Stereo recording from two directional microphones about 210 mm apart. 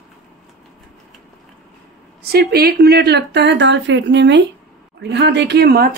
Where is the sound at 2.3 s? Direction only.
50° right (ahead or behind).